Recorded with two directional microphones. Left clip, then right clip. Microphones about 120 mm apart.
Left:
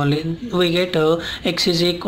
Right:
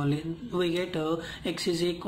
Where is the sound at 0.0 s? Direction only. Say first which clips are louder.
Left 10 dB; 30° left (ahead or behind).